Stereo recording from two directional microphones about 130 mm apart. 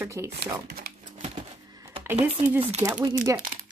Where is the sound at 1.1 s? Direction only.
60° right (ahead or behind).